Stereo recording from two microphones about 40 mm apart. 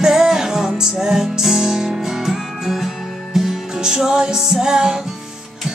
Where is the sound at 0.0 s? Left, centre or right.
Centre.